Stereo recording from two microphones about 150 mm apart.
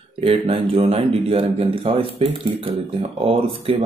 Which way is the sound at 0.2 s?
35° right (ahead or behind).